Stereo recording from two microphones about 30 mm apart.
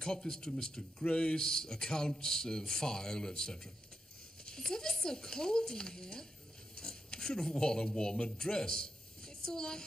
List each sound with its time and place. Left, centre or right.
0.0 s speech: left
1.4 s speech: centre